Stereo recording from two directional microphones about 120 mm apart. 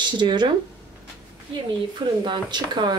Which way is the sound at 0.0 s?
40° right (ahead or behind).